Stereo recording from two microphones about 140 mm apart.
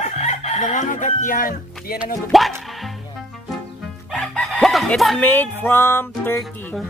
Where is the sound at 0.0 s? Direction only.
50° left (ahead or behind); by 1.6 s 75° left (ahead or behind).